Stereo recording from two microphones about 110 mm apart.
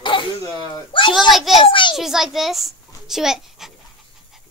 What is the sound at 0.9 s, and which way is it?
Speech, 50° left (ahead or behind).